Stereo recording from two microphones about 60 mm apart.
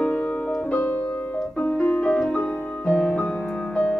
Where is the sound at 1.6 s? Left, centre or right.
Left.